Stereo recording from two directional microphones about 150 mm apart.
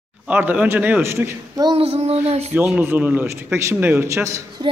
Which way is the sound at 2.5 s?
10° right (ahead or behind).